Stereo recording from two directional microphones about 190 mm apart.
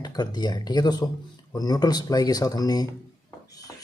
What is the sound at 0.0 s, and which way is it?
Speech, 20° left (ahead or behind).